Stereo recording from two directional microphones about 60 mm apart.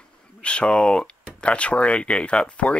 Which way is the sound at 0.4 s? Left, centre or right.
Centre.